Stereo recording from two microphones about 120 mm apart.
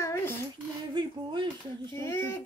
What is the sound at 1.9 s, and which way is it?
Speech, 25° left (ahead or behind).